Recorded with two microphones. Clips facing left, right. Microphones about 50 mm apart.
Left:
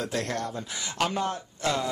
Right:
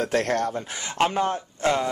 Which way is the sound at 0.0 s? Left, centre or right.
Right.